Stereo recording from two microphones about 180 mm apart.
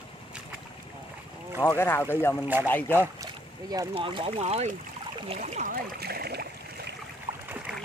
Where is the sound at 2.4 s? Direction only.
10° right (ahead or behind).